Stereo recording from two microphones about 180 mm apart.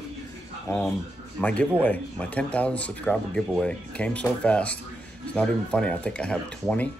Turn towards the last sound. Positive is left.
turn(degrees=5)  # may be behind; listen again after turning